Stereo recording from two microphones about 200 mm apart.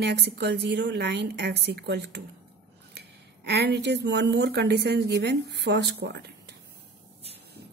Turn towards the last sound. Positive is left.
turn(degrees=-55)  # may be behind; listen again after turning